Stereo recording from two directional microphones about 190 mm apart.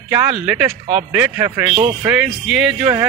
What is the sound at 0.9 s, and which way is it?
Speech, 10° right (ahead or behind).